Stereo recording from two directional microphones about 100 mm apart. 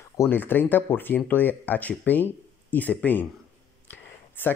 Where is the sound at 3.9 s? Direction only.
20° left (ahead or behind).